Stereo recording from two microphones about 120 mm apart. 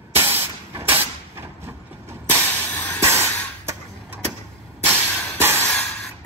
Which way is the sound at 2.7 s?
15° left (ahead or behind).